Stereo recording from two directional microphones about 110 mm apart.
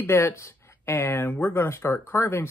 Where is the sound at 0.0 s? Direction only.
25° left (ahead or behind).